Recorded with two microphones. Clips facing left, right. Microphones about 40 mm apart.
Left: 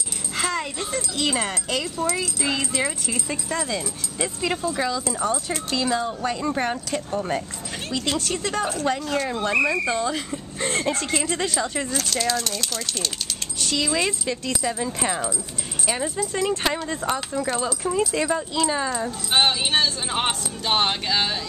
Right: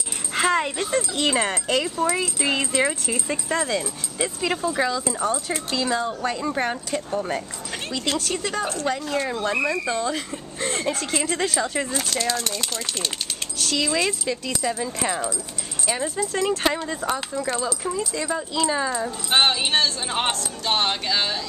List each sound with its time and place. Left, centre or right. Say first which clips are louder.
0.3 s speech: right 5 dB; right
13.7 s speech: even; centre
18.1 s speech: left 3 dB; centre
18.5 s speech: even; centre